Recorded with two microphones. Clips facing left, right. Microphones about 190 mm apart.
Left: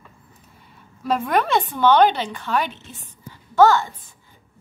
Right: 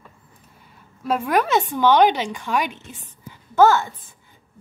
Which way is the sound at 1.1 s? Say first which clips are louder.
Even; 5° right (ahead or behind).